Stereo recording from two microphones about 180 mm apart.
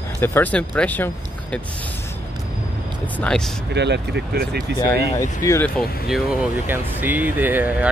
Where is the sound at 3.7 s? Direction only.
70° right (ahead or behind).